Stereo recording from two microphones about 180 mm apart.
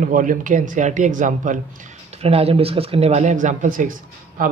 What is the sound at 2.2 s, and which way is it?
Speech, 35° right (ahead or behind).